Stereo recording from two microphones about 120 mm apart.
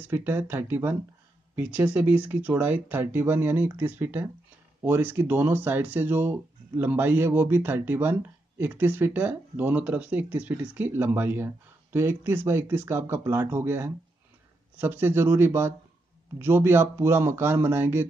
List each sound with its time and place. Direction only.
0.0 s speech: 15° right (ahead or behind)